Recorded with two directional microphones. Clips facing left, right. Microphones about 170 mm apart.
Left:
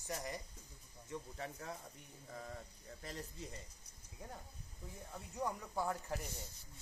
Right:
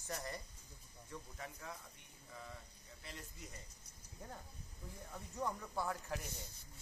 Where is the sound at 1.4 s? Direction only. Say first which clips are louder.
Left 3 dB; 40° left (ahead or behind).